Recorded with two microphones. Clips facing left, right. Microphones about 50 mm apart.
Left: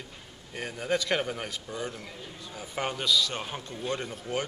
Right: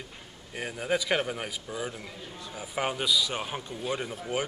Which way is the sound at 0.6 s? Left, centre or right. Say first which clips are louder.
Even; centre.